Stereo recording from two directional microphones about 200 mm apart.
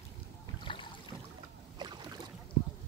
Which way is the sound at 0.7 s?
25° left (ahead or behind).